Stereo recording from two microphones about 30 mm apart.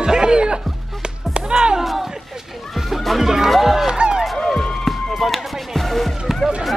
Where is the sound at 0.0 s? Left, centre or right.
Right.